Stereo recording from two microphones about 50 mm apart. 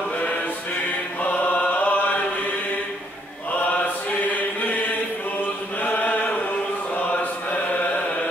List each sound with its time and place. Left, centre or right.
1.2 s chant: left
4.6 s chant: left